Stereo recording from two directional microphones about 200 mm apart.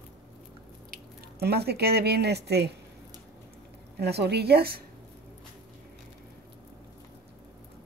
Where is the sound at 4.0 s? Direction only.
55° right (ahead or behind).